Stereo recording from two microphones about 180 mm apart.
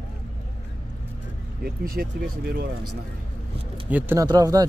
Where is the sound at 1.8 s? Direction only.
55° right (ahead or behind).